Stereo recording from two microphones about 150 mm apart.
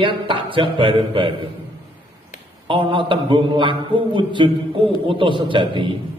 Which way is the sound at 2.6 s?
35° right (ahead or behind).